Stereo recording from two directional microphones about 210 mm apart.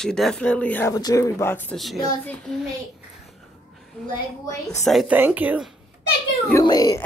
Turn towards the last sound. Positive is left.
turn(degrees=20)  # may be behind; listen again after turning